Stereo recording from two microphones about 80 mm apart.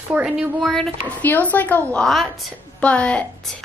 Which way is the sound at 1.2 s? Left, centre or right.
Left.